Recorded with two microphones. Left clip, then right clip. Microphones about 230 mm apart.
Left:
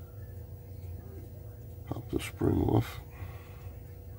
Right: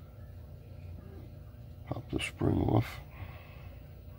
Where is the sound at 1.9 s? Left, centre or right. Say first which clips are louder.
Even; centre.